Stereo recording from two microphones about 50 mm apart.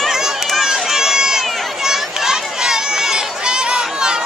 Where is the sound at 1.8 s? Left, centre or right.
Centre.